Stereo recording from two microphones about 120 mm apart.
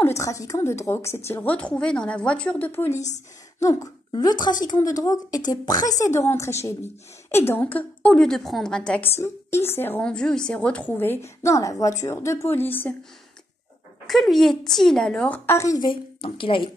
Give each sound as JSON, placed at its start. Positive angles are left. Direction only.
{"t": 0.0, "sound": "a woman's voice", "side_deg": 25}
{"t": 9.2, "sound": "a woman's voice", "side_deg": 20}
{"t": 14.0, "sound": "a woman's voice", "side_deg": 0}
{"t": 15.5, "sound": "a woman's voice", "side_deg": 25}
{"t": 15.8, "sound": "speech", "side_deg": 45}